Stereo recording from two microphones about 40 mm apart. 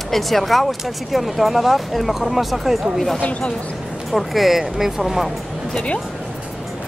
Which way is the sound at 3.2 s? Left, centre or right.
Left.